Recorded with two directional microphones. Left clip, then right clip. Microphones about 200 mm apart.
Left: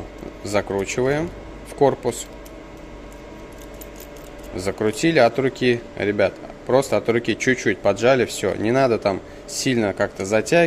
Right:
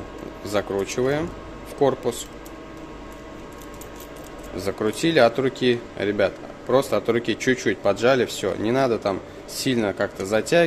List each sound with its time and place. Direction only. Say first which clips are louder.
0.4 s speech: left 2 dB; 15° left (ahead or behind)
4.6 s speech: left 2 dB; 15° left (ahead or behind)